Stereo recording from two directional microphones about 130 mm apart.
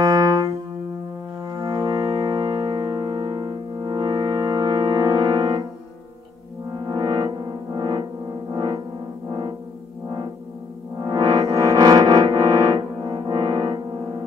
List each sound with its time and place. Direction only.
0.0 s music: 25° right (ahead or behind)
6.8 s music: 30° right (ahead or behind)
11.0 s music: 30° right (ahead or behind)